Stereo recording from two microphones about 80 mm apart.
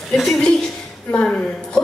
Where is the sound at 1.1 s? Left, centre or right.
Centre.